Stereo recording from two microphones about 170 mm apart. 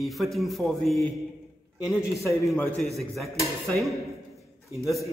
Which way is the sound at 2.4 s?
5° left (ahead or behind).